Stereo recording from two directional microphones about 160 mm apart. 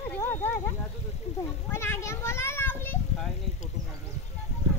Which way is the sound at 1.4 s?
15° left (ahead or behind).